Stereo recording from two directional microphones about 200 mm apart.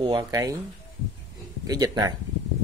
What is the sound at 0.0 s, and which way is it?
Speech, 25° right (ahead or behind).